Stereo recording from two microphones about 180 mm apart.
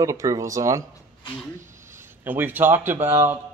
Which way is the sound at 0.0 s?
15° right (ahead or behind).